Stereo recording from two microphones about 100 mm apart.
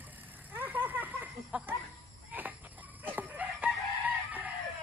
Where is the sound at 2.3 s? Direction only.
15° right (ahead or behind).